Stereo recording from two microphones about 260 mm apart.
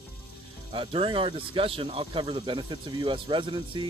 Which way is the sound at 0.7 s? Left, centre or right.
Centre.